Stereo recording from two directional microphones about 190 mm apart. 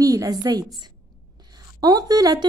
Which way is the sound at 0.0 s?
20° right (ahead or behind).